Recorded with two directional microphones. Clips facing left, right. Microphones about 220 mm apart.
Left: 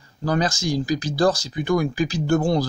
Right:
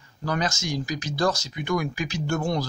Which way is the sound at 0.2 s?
35° left (ahead or behind).